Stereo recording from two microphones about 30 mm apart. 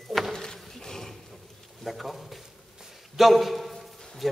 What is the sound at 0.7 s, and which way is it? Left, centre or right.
Wild animals, centre.